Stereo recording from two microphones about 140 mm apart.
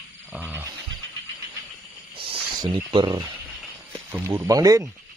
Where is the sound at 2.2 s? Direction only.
35° right (ahead or behind).